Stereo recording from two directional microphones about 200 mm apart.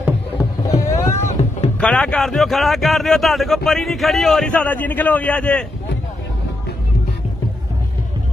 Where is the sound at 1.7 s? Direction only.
5° left (ahead or behind).